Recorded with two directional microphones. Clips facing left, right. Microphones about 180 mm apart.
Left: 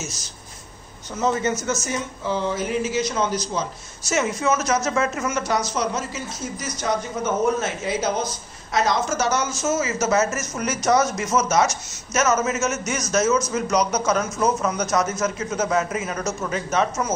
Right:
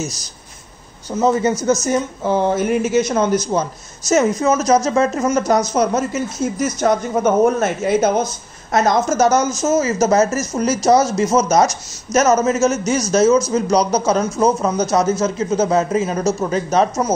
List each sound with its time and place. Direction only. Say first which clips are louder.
0.0 s speech: right 8 dB; 35° right (ahead or behind)
2.2 s speech: right 7 dB; 55° right (ahead or behind); by 5.4 s 35° right (ahead or behind)
5.7 s speech: right 8 dB; 50° right (ahead or behind)